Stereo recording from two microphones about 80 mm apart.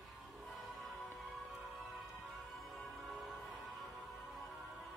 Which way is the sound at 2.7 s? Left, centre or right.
Centre.